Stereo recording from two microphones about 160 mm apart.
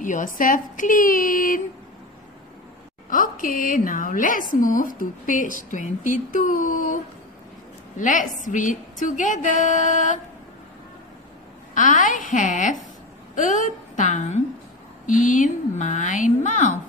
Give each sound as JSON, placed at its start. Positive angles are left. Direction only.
{"t": 0.0, "sound": "a woman's voice", "side_deg": 55}
{"t": 3.1, "sound": "a woman's voice", "side_deg": 60}
{"t": 8.0, "sound": "a woman's voice", "side_deg": 55}
{"t": 11.7, "sound": "a woman's voice", "side_deg": 55}